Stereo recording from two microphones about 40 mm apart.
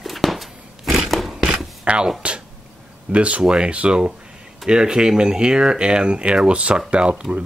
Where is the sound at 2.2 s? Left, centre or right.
Right.